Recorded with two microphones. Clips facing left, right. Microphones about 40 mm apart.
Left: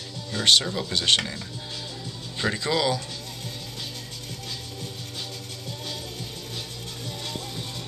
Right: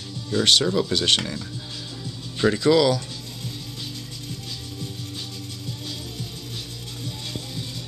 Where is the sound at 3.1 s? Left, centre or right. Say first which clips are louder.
Right 1 dB; left.